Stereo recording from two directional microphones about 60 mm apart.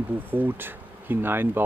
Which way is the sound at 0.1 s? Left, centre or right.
Right.